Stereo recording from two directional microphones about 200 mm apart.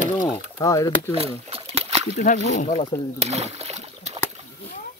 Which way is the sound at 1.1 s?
30° right (ahead or behind).